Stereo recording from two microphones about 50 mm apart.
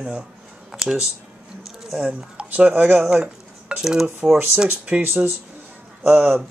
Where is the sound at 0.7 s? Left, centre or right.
Centre.